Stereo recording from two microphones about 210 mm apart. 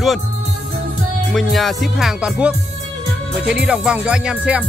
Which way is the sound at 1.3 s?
Centre (ahead or behind).